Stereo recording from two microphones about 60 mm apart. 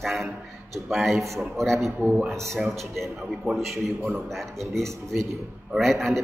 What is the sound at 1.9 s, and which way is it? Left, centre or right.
Speech, centre.